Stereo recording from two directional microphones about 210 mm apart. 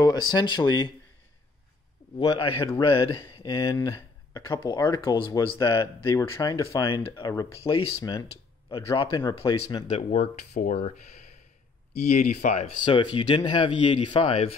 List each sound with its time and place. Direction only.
0.0 s speech: 20° left (ahead or behind)
2.1 s speech: 25° left (ahead or behind)
12.0 s speech: 35° left (ahead or behind)
12.8 s speech: 25° left (ahead or behind)